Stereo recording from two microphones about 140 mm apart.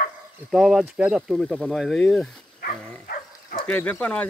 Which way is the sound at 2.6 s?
80° left.